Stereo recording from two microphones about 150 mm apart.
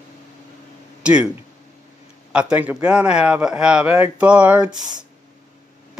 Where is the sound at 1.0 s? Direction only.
5° right (ahead or behind).